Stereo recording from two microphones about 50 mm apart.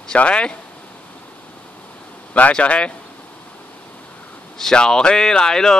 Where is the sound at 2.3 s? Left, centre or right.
Left.